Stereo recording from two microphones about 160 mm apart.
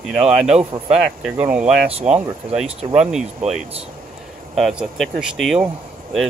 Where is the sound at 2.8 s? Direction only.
40° right (ahead or behind).